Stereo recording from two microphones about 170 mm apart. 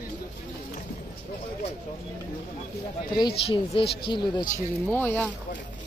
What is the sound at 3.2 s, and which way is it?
Speech, 30° left (ahead or behind).